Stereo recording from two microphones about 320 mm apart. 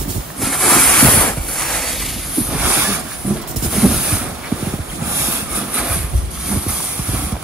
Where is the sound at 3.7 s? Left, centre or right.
Centre.